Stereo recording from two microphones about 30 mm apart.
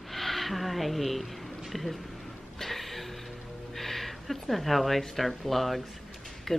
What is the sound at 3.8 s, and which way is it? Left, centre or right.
Speech, centre.